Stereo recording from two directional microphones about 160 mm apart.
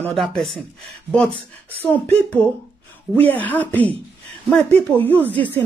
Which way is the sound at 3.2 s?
10° left (ahead or behind).